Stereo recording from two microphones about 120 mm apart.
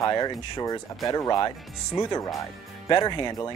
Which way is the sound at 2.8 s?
35° left (ahead or behind).